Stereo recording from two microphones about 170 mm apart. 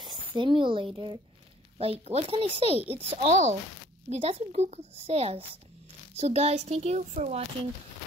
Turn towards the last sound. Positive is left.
turn(degrees=-45)  # may be behind; listen again after turning